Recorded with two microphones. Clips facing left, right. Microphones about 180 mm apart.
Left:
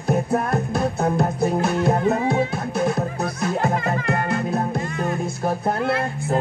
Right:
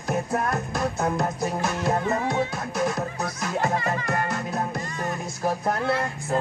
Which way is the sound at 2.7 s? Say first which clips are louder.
Left 4 dB; 30° left (ahead or behind).